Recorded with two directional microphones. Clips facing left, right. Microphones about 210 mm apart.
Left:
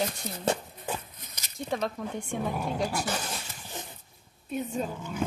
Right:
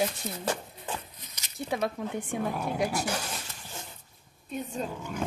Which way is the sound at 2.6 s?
10° right (ahead or behind).